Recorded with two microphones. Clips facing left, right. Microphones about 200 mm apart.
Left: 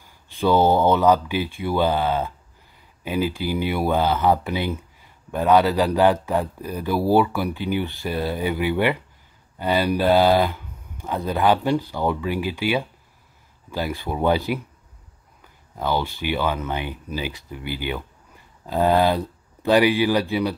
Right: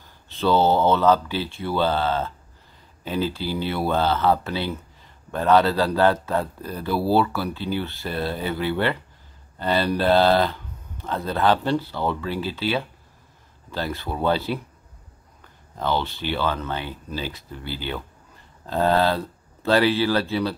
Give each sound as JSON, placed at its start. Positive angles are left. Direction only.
{"t": 0.0, "sound": "speech", "side_deg": 10}